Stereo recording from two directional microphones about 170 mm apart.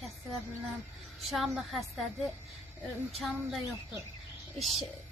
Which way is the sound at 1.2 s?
Centre (ahead or behind).